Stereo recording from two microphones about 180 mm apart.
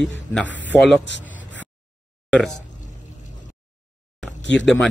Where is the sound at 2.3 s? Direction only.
Centre (ahead or behind).